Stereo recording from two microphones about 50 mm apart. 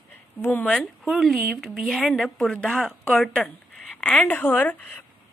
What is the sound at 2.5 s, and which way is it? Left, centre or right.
Speech, centre.